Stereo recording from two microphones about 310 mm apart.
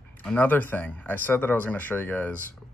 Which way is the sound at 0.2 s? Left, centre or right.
Centre.